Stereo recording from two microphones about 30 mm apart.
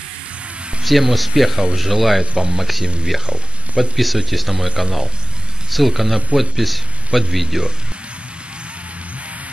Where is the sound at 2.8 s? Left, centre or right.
Right.